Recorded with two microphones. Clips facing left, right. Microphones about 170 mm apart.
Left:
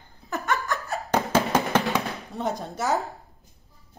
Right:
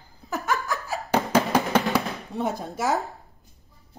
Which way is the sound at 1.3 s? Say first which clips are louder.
Right 1 dB; 10° right (ahead or behind).